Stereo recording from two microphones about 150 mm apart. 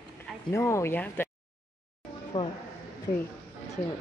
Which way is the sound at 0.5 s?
20° left (ahead or behind).